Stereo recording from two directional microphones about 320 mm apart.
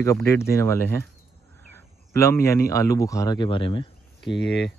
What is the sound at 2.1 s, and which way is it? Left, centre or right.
Speech, centre.